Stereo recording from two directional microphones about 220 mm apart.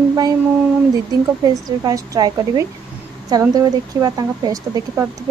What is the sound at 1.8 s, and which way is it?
Speech, 15° right (ahead or behind).